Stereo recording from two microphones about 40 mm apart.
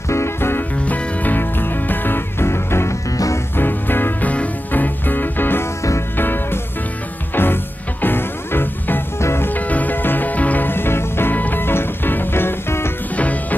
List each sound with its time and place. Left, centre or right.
0.4 s music: left
0.8 s music: left
1.4 s music: left
3.5 s music: left
4.2 s music: left
9.5 s music: left
10.7 s music: left
11.3 s music: left
11.6 s music: left
13.1 s music: left